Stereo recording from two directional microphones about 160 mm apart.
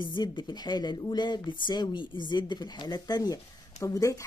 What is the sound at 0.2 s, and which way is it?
A woman's voice, 25° left (ahead or behind).